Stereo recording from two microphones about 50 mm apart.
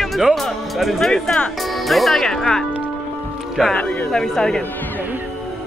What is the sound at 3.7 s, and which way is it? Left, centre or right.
Speech, left.